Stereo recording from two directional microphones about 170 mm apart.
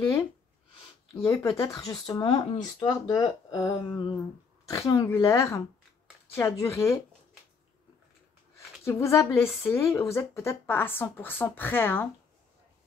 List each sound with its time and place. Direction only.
1.2 s speech: 15° left (ahead or behind)
2.2 s a woman's voice: 30° left (ahead or behind); by 7.0 s 15° left (ahead or behind)
8.8 s a woman's voice: 15° left (ahead or behind)